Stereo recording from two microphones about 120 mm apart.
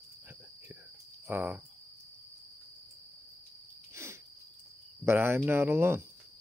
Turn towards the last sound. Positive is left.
turn(degrees=-20)  # may be behind; listen again after turning